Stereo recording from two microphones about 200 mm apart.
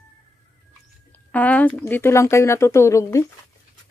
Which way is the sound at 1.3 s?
10° left (ahead or behind).